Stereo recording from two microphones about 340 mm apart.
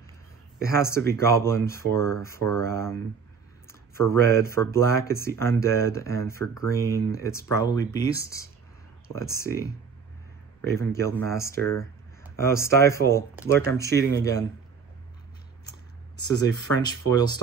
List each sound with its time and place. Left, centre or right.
0.7 s speech: centre
10.7 s speech: centre
16.8 s speech: centre